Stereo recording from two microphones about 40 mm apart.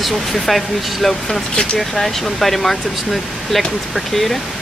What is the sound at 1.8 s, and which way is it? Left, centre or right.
Speech, centre.